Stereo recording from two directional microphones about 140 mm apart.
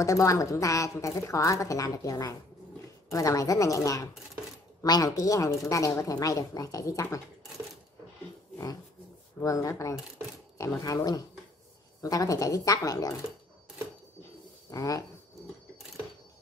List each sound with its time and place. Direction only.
0.0 s a woman's voice: 25° left (ahead or behind)
9.4 s a woman's voice: 25° left (ahead or behind)
14.7 s a woman's voice: 25° left (ahead or behind)